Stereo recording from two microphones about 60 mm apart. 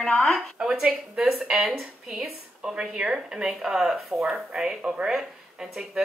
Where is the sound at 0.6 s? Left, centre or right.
Centre.